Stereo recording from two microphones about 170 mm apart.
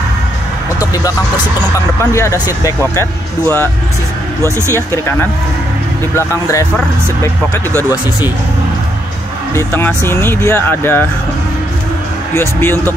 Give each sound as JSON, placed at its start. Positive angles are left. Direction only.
{"t": 0.7, "sound": "music", "side_deg": 20}
{"t": 1.6, "sound": "speech", "side_deg": 15}
{"t": 4.7, "sound": "speech", "side_deg": 15}
{"t": 6.1, "sound": "speech", "side_deg": 20}
{"t": 9.5, "sound": "speech", "side_deg": 15}
{"t": 12.4, "sound": "speech", "side_deg": 15}